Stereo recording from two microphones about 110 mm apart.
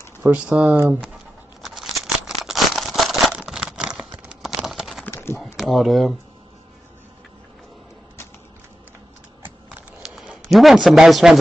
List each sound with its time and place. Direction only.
0.2 s speech: 10° right (ahead or behind)
1.6 s a sound: centre (ahead or behind)
5.0 s pigeon: 25° left (ahead or behind)
5.4 s a sound: centre (ahead or behind)
9.4 s computer keyboard: 15° right (ahead or behind)
10.0 s speech: 5° right (ahead or behind)